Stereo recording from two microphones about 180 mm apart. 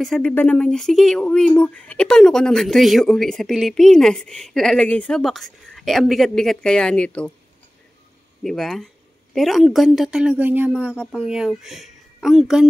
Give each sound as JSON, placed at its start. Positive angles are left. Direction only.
{"t": 0.0, "sound": "speech", "side_deg": 5}
{"t": 8.5, "sound": "speech", "side_deg": 0}